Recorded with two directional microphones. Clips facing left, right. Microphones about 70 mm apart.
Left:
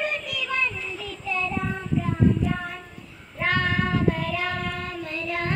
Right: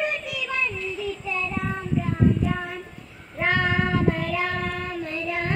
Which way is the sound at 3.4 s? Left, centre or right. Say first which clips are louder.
Right 1 dB; right.